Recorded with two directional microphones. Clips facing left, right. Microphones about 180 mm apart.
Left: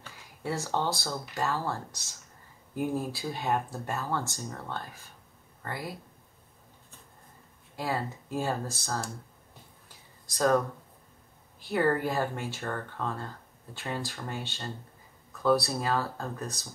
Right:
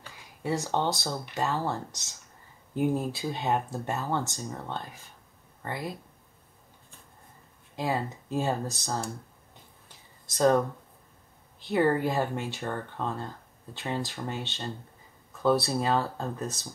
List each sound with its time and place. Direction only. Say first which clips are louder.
0.4 s speech: right 2 dB; 20° right (ahead or behind)
7.7 s speech: right 2 dB; 20° right (ahead or behind)
10.2 s speech: right 2 dB; 25° right (ahead or behind)
11.6 s speech: right 2 dB; 20° right (ahead or behind)